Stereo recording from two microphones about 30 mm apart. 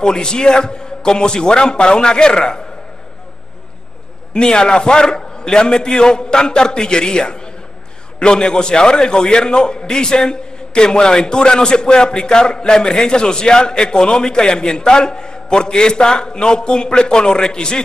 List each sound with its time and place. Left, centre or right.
0.0 s a man's voice: left
4.3 s a man's voice: left